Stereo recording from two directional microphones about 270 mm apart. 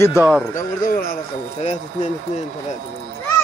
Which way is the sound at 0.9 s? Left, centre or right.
Left.